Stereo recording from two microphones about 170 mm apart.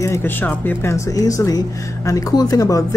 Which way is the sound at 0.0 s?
15° left (ahead or behind).